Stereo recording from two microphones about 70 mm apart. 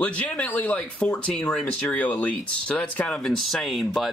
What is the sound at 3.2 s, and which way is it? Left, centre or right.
Speech, centre.